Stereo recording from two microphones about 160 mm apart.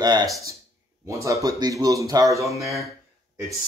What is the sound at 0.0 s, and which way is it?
Speech, 25° right (ahead or behind).